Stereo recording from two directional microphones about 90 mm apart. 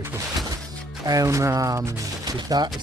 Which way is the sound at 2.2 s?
50° right (ahead or behind).